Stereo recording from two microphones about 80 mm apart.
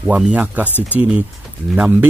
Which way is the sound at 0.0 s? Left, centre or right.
Centre.